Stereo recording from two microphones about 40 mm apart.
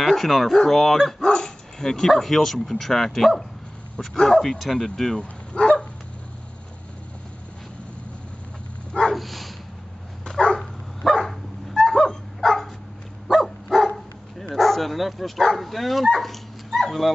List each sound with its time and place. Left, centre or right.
0.0 s speech: centre
4.7 s speech: centre
5.1 s bow-wow: left
9.1 s dog: centre
10.2 s dog: centre